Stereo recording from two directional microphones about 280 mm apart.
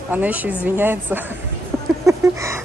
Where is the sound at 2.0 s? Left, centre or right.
Centre.